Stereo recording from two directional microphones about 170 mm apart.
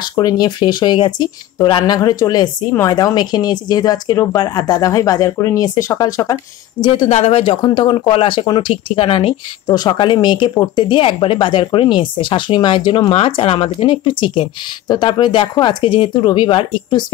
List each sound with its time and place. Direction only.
0.1 s speech: 25° left (ahead or behind)
7.1 s speech: 40° left (ahead or behind)